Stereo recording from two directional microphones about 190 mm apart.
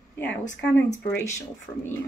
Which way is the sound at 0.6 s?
10° left (ahead or behind).